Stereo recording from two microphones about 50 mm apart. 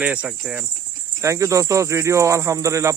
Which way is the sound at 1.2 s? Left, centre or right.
Right.